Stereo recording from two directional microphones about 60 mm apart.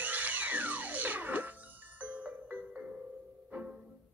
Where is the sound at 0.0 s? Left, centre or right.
Right.